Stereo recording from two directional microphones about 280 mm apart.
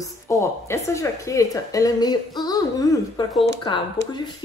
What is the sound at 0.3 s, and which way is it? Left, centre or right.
Speech, centre.